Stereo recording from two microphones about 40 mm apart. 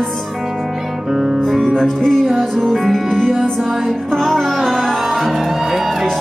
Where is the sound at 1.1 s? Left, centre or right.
Centre.